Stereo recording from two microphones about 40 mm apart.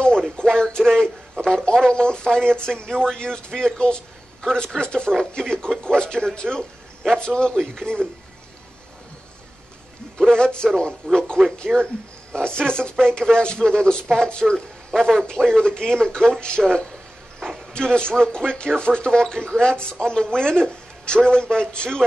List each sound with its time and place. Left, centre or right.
0.4 s a sound: left
1.4 s speech: centre
10.1 s a man's voice: centre
17.7 s speech: left